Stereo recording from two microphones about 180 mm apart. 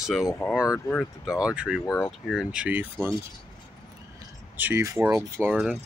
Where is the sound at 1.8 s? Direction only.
15° left (ahead or behind).